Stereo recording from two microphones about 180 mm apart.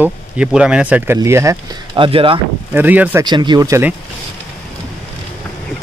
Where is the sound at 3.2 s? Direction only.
25° right (ahead or behind).